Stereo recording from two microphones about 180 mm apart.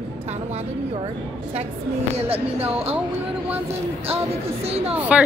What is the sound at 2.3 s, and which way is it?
Speech, 35° right (ahead or behind).